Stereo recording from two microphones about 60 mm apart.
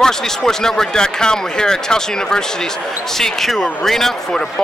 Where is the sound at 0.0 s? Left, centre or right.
Centre.